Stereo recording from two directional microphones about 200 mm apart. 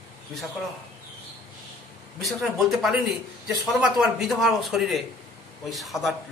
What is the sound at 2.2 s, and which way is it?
A man's voice, centre (ahead or behind).